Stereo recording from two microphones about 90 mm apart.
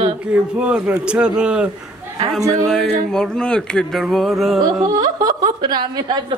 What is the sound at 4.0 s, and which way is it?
Music, centre (ahead or behind).